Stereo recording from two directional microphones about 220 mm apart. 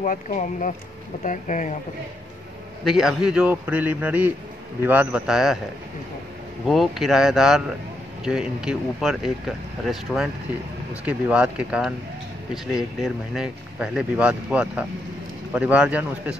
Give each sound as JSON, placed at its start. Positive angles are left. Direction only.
{"t": 0.0, "sound": "speech", "side_deg": 35}
{"t": 2.8, "sound": "speech", "side_deg": 0}
{"t": 6.7, "sound": "speech", "side_deg": 0}